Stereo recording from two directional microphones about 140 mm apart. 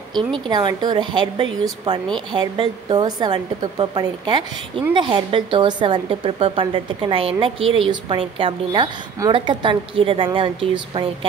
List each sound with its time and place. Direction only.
0.5 s a woman's voice: 30° right (ahead or behind)